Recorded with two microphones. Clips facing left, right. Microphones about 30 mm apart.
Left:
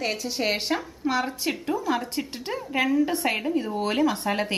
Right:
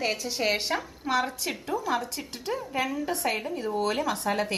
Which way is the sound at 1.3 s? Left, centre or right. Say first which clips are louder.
Left 4 dB; centre.